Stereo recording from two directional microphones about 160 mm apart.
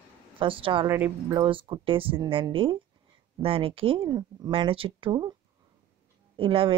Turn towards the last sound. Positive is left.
turn(degrees=-35)  # may be behind; listen again after turning